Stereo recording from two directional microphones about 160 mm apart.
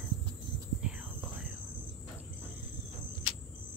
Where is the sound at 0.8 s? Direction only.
5° right (ahead or behind).